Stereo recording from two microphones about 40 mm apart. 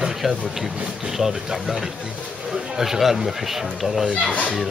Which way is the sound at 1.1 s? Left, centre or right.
Centre.